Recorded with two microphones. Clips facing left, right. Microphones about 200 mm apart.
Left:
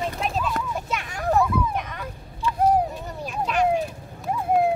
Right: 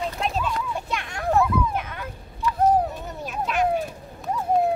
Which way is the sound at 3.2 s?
Centre (ahead or behind).